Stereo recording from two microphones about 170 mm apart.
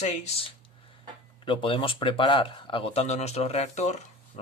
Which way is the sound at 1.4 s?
30° left (ahead or behind).